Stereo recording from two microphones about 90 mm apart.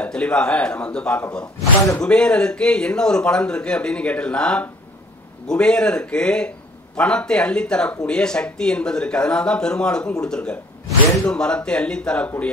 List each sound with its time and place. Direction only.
0.0 s a man's voice: 10° left (ahead or behind)